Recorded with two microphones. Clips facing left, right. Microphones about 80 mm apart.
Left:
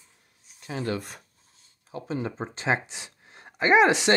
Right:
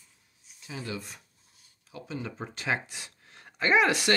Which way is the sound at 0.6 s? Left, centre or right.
Left.